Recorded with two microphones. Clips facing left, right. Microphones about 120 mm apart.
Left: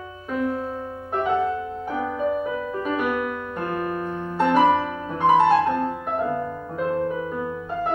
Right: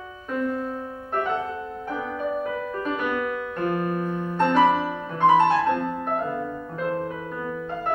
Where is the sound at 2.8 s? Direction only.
10° left (ahead or behind).